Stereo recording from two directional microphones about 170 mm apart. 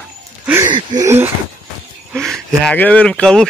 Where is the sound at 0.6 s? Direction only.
25° right (ahead or behind).